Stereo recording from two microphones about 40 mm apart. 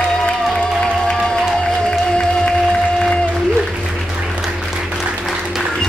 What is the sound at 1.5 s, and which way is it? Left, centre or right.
Music, centre.